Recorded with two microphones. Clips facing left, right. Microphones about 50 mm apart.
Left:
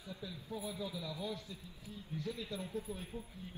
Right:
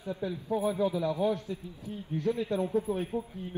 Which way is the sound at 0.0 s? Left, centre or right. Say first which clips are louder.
Right 13 dB; right.